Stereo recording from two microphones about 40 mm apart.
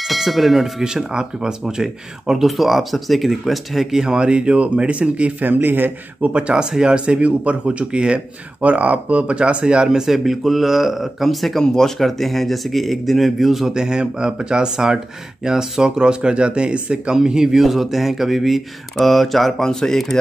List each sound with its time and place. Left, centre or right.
0.1 s speech: centre
0.8 s speech: centre
2.4 s speech: centre
4.2 s speech: right
5.4 s a man's voice: right
6.2 s speech: right
6.5 s speech: centre
7.1 s speech: right
9.8 s speech: centre
13.7 s speech: centre
17.2 s speech: centre
17.6 s speech: centre